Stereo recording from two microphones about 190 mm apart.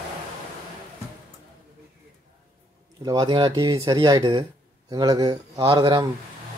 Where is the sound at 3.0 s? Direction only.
20° right (ahead or behind).